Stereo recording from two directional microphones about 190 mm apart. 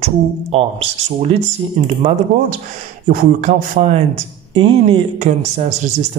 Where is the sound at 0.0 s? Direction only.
35° right (ahead or behind).